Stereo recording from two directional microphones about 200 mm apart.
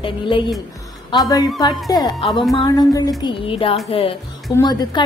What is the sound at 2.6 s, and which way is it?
Music, 20° left (ahead or behind).